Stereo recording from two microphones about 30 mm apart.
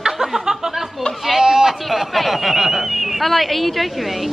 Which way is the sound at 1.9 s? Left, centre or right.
Centre.